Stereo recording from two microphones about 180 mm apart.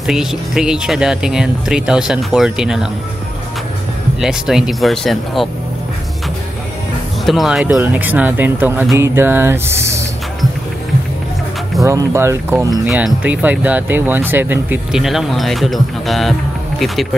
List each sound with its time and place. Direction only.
0.0 s speech: 5° right (ahead or behind)
4.2 s speech: centre (ahead or behind)
7.2 s speech: centre (ahead or behind)
11.8 s speech: 15° right (ahead or behind); by 17.1 s centre (ahead or behind)